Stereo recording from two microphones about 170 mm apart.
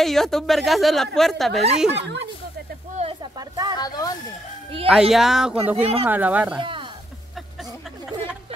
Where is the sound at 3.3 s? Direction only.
25° right (ahead or behind).